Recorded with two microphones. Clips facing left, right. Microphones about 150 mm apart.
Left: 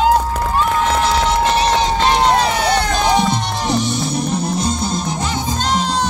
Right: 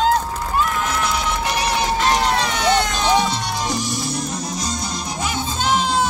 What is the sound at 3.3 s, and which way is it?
Music, 60° left (ahead or behind).